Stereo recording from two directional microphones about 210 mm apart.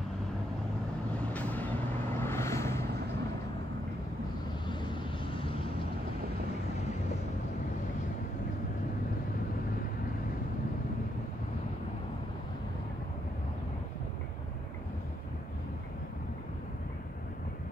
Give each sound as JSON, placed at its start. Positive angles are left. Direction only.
{"t": 1.3, "sound": "vehicle", "side_deg": 10}
{"t": 5.2, "sound": "vehicle", "side_deg": 25}